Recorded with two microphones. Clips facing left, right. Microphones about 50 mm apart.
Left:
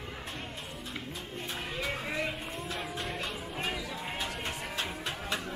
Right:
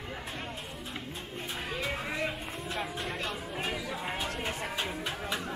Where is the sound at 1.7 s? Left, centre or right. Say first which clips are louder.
Right 1 dB; centre.